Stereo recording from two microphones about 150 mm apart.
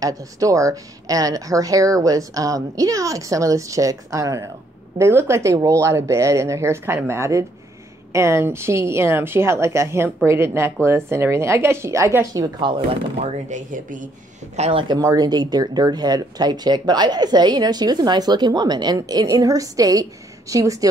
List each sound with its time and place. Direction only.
0.0 s a woman's voice: 20° right (ahead or behind)
12.5 s speech: 30° right (ahead or behind)
13.2 s speech: 55° right (ahead or behind)
14.6 s speech: 35° right (ahead or behind)
15.0 s speech: 25° right (ahead or behind)